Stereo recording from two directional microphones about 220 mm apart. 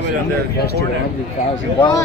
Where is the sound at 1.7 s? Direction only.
20° left (ahead or behind).